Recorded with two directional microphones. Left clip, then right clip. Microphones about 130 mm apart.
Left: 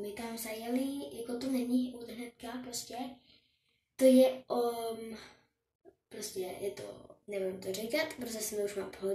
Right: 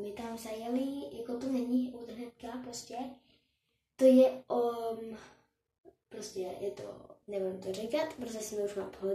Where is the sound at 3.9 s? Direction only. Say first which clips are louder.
Right 1 dB; 10° right (ahead or behind).